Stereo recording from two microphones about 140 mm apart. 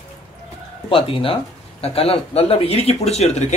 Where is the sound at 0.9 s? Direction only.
40° left (ahead or behind).